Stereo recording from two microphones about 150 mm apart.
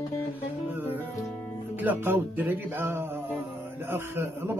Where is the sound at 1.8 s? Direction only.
10° right (ahead or behind).